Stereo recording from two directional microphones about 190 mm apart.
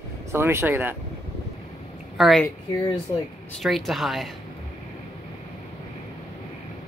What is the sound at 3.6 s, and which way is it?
Speech, centre (ahead or behind).